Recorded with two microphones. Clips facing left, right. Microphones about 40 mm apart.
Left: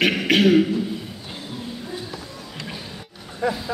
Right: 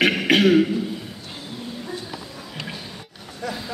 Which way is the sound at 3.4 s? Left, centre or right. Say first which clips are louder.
Left 6 dB; left.